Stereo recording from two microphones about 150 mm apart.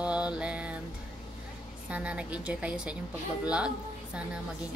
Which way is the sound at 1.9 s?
10° right (ahead or behind).